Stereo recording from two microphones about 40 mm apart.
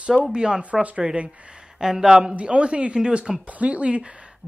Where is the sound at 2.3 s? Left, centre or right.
Right.